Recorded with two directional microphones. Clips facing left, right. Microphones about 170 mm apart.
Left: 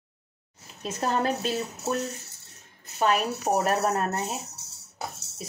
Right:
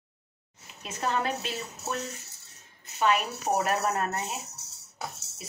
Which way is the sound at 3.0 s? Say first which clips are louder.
Left 2 dB; 40° left (ahead or behind).